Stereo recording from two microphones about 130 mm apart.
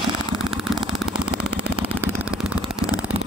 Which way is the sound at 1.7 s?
10° right (ahead or behind).